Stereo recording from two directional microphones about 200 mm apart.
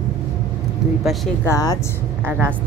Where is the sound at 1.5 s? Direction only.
20° left (ahead or behind).